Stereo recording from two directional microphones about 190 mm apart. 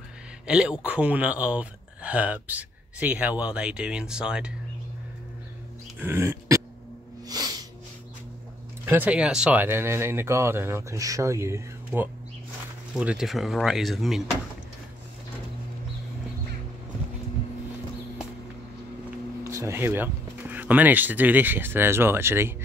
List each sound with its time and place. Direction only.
0.5 s speech: 5° right (ahead or behind)
5.9 s speech: 10° right (ahead or behind)
7.2 s sneeze: 20° right (ahead or behind)
8.8 s speech: 10° right (ahead or behind)
19.0 s speech: 15° right (ahead or behind)